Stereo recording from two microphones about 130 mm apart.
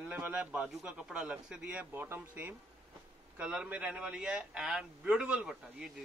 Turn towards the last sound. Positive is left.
turn(degrees=-5)  # may be behind; listen again after turning